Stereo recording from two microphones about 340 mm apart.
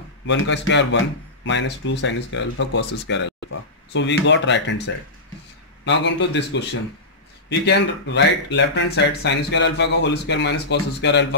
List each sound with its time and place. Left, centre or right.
0.3 s speech: left